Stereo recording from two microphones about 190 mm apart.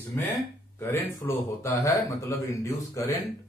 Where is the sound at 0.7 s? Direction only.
15° left (ahead or behind).